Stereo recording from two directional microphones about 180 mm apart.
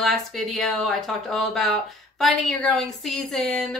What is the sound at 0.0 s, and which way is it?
Speech, centre (ahead or behind).